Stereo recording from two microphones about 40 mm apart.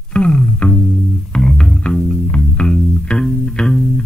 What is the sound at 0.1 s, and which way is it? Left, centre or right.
Music, left.